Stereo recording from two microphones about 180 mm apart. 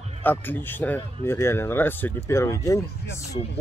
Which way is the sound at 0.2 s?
10° left (ahead or behind).